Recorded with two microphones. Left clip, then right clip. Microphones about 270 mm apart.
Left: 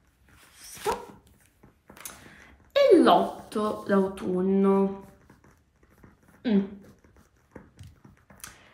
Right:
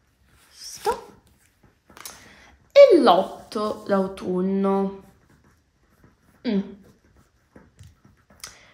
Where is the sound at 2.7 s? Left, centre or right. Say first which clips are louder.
Right 6 dB; right.